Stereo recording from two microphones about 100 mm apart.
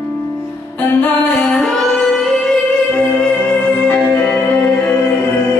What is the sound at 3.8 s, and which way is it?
Music, 20° left (ahead or behind).